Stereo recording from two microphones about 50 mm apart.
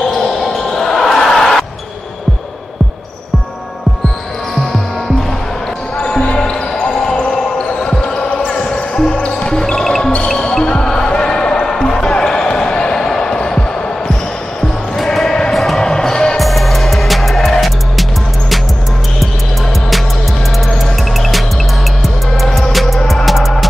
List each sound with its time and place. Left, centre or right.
0.4 s basketball bounce: centre
5.9 s basketball bounce: left
9.1 s music: left
10.2 s basketball bounce: centre
15.0 s music: centre
15.9 s music: centre
16.3 s music: centre
22.0 s music: centre